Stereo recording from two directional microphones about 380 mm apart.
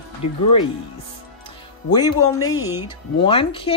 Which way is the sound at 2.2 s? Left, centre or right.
Left.